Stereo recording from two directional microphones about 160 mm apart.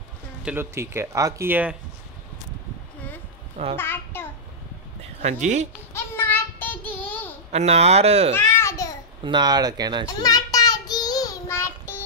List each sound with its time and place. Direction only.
0.5 s speech: 15° right (ahead or behind)
3.7 s a sound: 15° left (ahead or behind)
5.2 s speech: 45° right (ahead or behind)
5.9 s child singing: 15° left (ahead or behind)
7.5 s speech: 40° right (ahead or behind)
8.4 s babbling: 15° left (ahead or behind)
9.2 s speech: 30° right (ahead or behind)
10.0 s child singing: 25° left (ahead or behind)